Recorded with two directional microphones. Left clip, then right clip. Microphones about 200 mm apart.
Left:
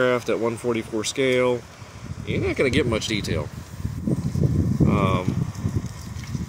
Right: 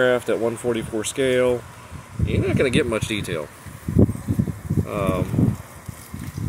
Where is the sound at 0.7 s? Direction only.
55° left (ahead or behind).